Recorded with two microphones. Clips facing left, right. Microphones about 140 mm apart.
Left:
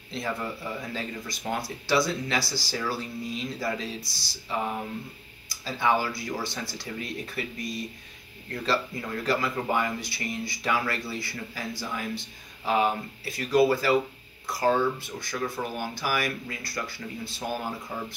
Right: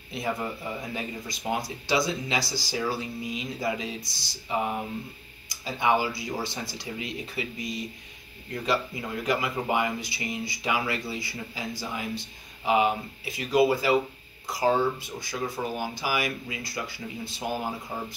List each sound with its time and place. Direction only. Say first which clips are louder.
0.1 s speech: right 1 dB; 15° right (ahead or behind)
5.7 s speech: right 1 dB; 15° right (ahead or behind)